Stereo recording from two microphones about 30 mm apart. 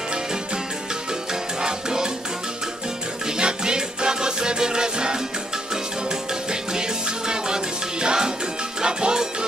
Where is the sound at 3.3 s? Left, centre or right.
Right.